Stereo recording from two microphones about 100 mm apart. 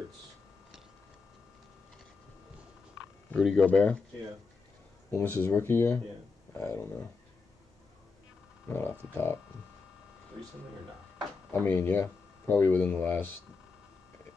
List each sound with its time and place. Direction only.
3.3 s speech: centre (ahead or behind)
3.7 s speech: 10° left (ahead or behind)
5.1 s speech: 20° left (ahead or behind)
8.6 s speech: 20° left (ahead or behind)
11.5 s speech: 20° left (ahead or behind)